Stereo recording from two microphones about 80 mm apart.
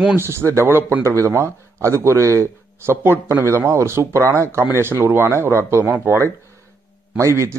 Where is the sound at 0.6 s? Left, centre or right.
Right.